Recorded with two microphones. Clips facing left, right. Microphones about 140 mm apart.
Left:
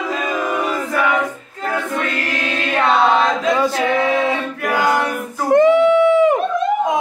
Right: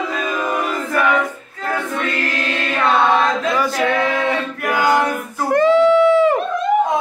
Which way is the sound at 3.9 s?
15° left (ahead or behind).